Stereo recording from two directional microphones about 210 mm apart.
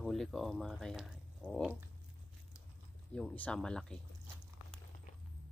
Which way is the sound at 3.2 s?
5° left (ahead or behind).